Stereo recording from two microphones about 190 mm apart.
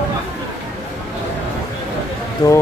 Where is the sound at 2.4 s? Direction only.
20° left (ahead or behind).